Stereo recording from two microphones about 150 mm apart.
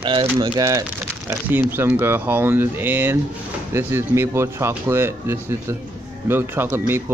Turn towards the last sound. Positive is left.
turn(degrees=-15)  # may be behind; listen again after turning